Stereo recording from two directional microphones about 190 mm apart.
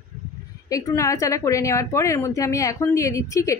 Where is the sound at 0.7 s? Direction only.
15° left (ahead or behind).